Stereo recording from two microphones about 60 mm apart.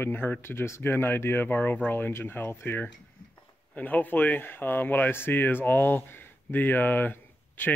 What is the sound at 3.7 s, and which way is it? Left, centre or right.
Speech, left.